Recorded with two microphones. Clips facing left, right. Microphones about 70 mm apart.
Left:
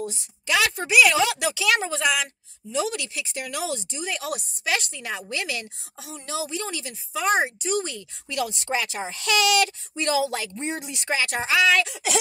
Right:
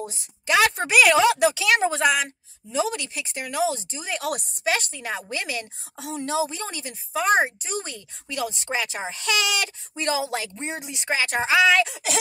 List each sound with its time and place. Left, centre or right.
0.0 s a woman's voice: right
5.9 s a woman's voice: right
6.3 s speech: right; by 12.0 s centre